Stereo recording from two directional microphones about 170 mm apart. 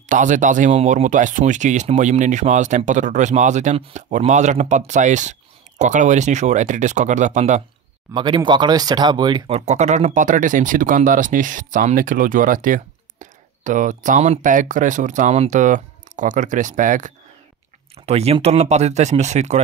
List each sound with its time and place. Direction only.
0.0 s speech: 50° right (ahead or behind)
8.1 s speech: 25° right (ahead or behind)
9.5 s speech: 40° right (ahead or behind)
17.9 s speech: 40° right (ahead or behind)